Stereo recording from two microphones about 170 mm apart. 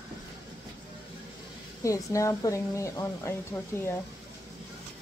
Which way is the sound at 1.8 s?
20° left (ahead or behind).